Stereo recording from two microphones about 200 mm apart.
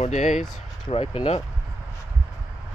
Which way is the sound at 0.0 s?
35° left (ahead or behind).